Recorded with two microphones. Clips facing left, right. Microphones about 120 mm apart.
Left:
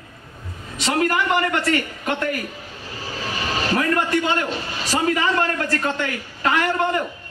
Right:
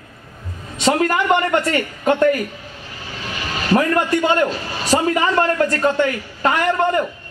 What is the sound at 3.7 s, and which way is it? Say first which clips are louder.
A man's voice: right 5 dB; 35° right (ahead or behind).